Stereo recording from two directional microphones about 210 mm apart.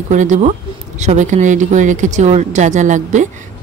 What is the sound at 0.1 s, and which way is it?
Speech, 35° right (ahead or behind).